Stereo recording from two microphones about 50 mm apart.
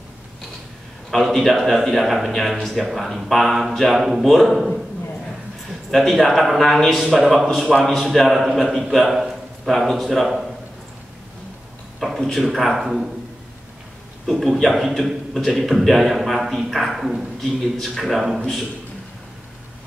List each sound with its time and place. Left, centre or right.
1.1 s a man's voice: centre
5.9 s a man's voice: centre
12.2 s a man's voice: centre
14.2 s a man's voice: centre
17.4 s a man's voice: centre